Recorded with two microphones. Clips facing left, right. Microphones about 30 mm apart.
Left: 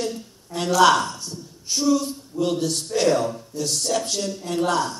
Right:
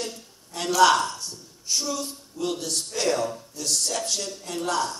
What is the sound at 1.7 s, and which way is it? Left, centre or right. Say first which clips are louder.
A man's voice: left 7 dB; left.